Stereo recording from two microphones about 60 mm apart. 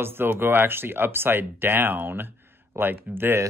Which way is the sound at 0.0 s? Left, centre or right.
Right.